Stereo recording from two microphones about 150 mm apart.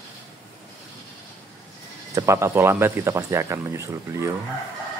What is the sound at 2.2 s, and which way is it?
Speech, 20° right (ahead or behind).